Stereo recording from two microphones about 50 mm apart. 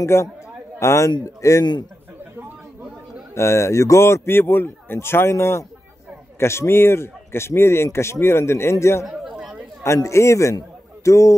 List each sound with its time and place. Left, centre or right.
0.0 s a man's voice: left
3.3 s a man's voice: left
5.3 s a man's voice: left
9.0 s chatter: centre
9.8 s speech: left